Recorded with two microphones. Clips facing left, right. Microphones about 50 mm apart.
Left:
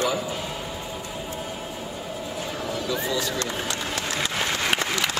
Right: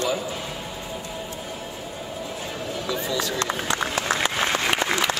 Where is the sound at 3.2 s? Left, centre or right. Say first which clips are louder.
Right 1 dB; right.